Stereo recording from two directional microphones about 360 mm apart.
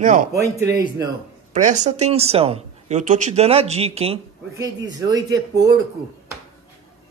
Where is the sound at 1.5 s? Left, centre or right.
Centre.